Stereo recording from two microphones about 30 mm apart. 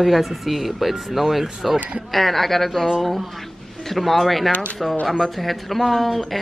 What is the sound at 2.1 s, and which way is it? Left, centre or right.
Speech, centre.